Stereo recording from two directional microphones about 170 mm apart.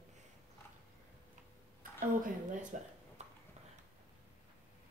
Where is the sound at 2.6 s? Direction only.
45° right (ahead or behind).